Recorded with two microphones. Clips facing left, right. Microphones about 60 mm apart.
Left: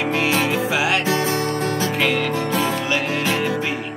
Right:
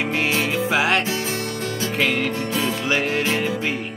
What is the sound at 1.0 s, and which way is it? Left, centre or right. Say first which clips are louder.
Music: left 5 dB; left.